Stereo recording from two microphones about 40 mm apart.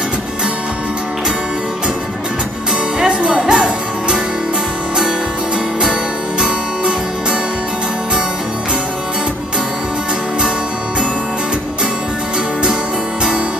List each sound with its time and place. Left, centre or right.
3.0 s music: right